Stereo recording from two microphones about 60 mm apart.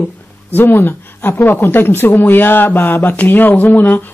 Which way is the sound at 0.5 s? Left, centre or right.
Left.